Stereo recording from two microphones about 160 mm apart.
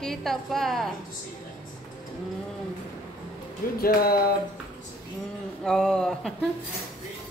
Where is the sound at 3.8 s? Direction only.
70° left (ahead or behind).